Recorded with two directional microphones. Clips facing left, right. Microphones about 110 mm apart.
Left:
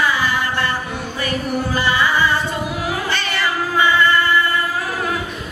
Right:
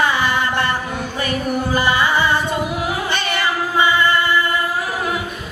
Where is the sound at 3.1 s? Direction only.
15° right (ahead or behind).